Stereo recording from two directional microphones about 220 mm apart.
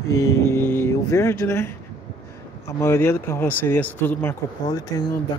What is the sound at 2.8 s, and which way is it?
Speech, 10° left (ahead or behind).